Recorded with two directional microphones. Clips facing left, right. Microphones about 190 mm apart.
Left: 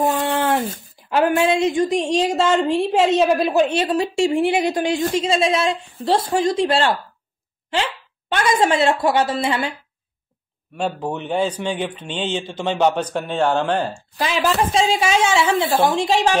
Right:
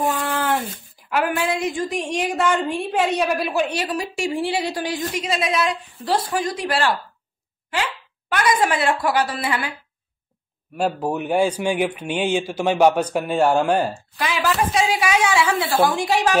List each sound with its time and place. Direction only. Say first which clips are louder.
0.2 s speech: left 3 dB; 25° left (ahead or behind)
10.8 s speech: right 2 dB; 10° right (ahead or behind)
13.9 s speech: left 2 dB; 25° left (ahead or behind)